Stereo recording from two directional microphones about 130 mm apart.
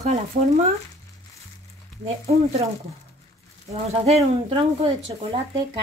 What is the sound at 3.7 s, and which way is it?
Speech, 55° right (ahead or behind).